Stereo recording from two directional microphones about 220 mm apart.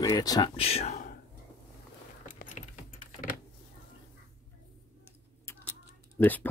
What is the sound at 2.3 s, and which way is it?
Keys jangling, 35° left (ahead or behind).